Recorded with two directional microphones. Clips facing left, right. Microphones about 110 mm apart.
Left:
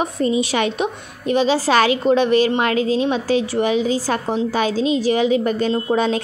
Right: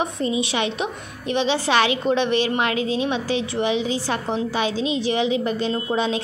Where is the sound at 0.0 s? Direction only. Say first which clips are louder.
Left 4 dB; 40° left (ahead or behind).